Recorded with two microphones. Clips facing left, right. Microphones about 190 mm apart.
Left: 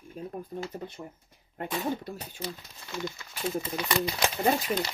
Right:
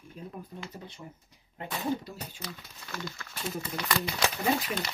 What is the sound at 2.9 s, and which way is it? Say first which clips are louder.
Speech: left 4 dB; 20° left (ahead or behind).